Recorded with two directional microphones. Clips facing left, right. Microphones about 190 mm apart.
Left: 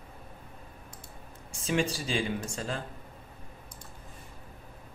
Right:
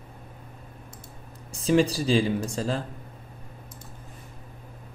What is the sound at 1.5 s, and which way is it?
Speech, 35° right (ahead or behind).